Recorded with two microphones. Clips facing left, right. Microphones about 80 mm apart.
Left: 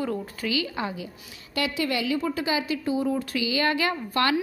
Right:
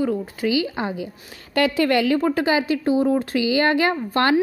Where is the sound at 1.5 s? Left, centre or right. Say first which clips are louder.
Right 8 dB; right.